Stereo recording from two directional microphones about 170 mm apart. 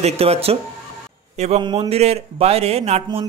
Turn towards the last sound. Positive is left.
turn(degrees=-40)  # may be behind; listen again after turning